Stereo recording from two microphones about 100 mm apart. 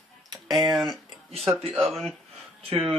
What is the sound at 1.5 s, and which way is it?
Speech, centre (ahead or behind).